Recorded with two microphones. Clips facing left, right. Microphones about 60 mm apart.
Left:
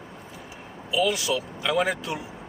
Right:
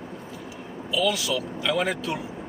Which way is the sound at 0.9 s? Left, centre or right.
Left.